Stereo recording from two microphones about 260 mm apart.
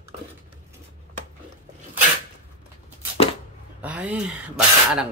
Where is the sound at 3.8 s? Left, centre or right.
Centre.